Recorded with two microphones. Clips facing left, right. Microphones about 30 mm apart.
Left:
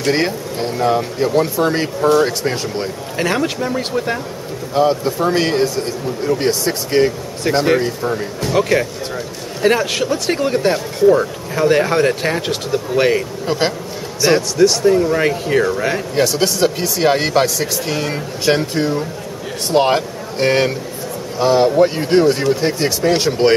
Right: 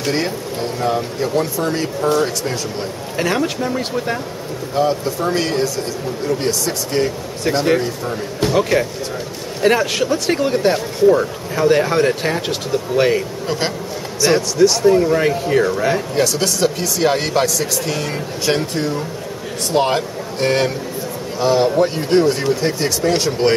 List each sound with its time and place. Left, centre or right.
0.1 s speech: left
3.2 s speech: centre
4.7 s speech: centre
6.6 s speech: left
7.5 s speech: centre
14.8 s speech: centre